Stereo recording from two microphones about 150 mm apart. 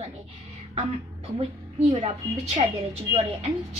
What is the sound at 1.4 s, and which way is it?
A woman's voice, 45° right (ahead or behind).